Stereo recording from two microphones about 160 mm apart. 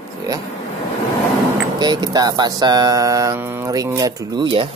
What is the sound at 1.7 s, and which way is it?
Speech, 25° right (ahead or behind).